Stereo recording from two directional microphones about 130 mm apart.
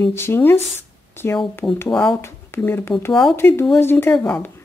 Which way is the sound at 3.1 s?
Centre (ahead or behind).